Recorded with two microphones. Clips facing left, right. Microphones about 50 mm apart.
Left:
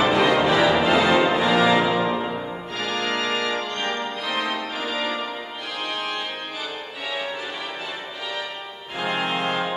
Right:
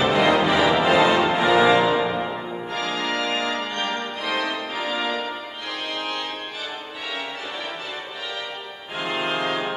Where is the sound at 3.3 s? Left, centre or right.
Centre.